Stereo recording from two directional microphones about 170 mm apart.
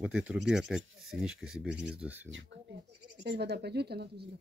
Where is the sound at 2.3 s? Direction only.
90° right; by 4.2 s 70° right (ahead or behind).